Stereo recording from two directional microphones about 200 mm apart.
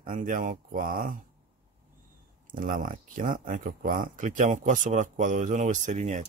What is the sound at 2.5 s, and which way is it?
Speech, 40° right (ahead or behind).